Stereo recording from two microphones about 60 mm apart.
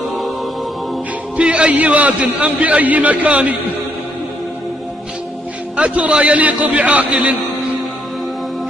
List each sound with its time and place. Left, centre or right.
1.3 s a man's voice: centre
5.8 s a man's voice: right